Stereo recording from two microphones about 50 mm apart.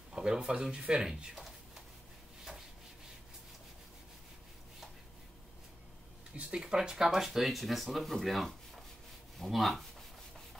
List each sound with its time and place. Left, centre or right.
0.1 s a sound: centre
0.5 s speech: centre
6.3 s speech: centre